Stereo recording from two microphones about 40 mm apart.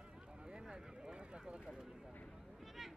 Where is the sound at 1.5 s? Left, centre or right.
Right.